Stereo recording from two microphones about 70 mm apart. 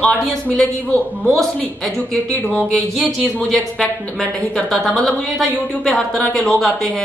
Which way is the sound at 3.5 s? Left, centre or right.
Centre.